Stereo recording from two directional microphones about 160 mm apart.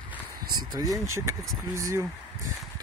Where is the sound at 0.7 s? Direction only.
20° right (ahead or behind).